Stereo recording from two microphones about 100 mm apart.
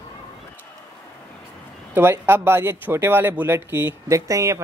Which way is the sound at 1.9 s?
25° right (ahead or behind).